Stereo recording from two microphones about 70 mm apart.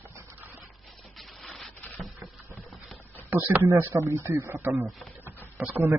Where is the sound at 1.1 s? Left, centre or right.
Centre.